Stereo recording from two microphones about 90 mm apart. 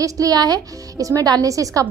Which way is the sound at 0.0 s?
40° right (ahead or behind).